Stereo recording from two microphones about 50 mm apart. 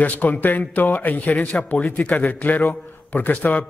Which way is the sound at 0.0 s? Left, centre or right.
Left.